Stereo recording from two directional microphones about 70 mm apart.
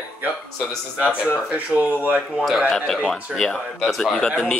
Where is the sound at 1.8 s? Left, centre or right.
Right.